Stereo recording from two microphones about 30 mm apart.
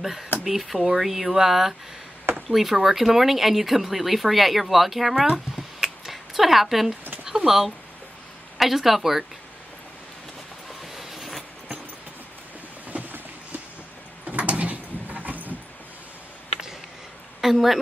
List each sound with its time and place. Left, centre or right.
0.0 s speech: centre
5.3 s a sound: centre
8.5 s speech: centre
11.0 s vehicle: centre
12.8 s boat: right
14.2 s a sound: right
17.4 s a woman's voice: centre